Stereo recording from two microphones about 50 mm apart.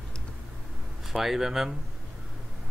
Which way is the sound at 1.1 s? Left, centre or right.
Centre.